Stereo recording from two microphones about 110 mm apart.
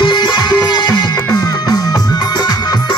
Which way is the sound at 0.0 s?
45° left (ahead or behind).